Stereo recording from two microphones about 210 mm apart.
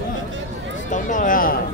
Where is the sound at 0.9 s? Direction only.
40° left (ahead or behind).